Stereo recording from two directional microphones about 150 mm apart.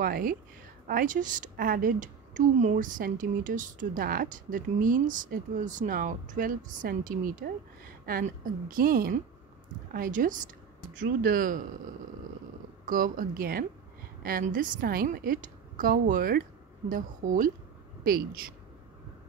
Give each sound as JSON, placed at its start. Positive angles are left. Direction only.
{"t": 0.0, "sound": "a woman's voice", "side_deg": -75}
{"t": 0.8, "sound": "a woman's voice", "side_deg": -65}
{"t": 12.8, "sound": "a woman's voice", "side_deg": -65}
{"t": 18.0, "sound": "a woman's voice", "side_deg": -80}